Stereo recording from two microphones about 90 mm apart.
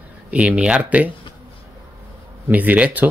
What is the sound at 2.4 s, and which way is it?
Speech, 15° right (ahead or behind).